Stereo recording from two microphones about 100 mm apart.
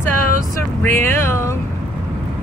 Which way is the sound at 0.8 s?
25° left (ahead or behind).